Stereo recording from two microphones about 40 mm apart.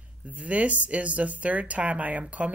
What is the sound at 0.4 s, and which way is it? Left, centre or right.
Speech, right.